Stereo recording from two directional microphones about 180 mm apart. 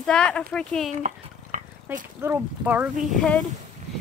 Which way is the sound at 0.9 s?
40° right (ahead or behind).